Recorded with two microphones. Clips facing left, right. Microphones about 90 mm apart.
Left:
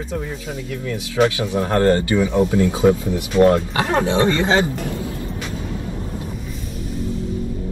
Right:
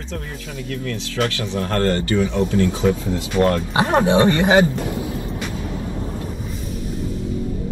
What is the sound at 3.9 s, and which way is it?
Speech, 20° right (ahead or behind).